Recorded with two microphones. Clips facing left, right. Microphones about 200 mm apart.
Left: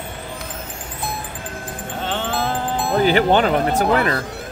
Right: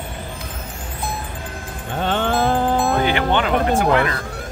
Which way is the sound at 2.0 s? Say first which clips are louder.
Right 5 dB; 50° right (ahead or behind).